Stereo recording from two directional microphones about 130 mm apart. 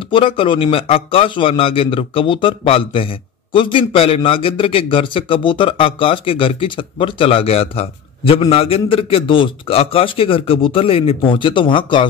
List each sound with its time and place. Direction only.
0.1 s a man's voice: 40° left (ahead or behind)